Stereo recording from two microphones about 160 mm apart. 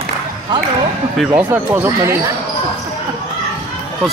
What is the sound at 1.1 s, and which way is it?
Speech, 10° right (ahead or behind).